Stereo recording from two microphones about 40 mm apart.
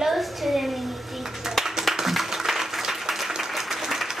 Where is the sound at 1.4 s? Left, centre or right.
Centre.